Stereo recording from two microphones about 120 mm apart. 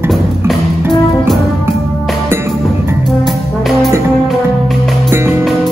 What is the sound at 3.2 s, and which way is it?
Brass instrument, centre (ahead or behind).